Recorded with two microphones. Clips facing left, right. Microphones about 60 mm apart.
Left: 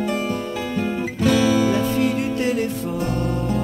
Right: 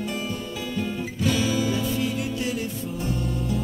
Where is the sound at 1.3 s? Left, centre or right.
Left.